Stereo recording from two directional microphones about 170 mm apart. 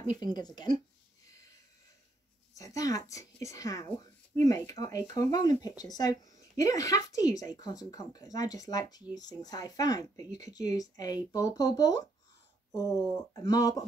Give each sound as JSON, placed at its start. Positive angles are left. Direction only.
{"t": 0.0, "sound": "speech", "side_deg": 25}
{"t": 2.5, "sound": "speech", "side_deg": 20}